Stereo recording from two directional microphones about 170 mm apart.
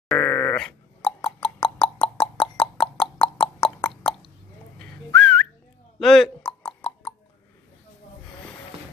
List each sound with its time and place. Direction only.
0.1 s grunt: 10° left (ahead or behind)
1.0 s plop: 30° left (ahead or behind)
4.7 s whistling: 5° left (ahead or behind)
5.9 s a sound: centre (ahead or behind)